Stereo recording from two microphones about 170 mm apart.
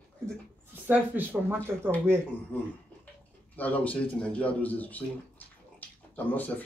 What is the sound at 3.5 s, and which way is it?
Speech, 10° left (ahead or behind).